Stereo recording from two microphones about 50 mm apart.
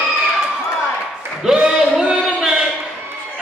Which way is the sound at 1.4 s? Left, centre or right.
Centre.